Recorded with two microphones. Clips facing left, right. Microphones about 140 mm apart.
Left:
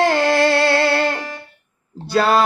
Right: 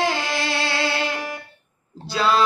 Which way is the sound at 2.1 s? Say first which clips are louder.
Left 5 dB; 55° left (ahead or behind).